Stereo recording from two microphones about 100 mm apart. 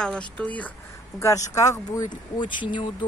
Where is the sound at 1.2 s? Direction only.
35° left (ahead or behind); by 3.0 s 55° left (ahead or behind).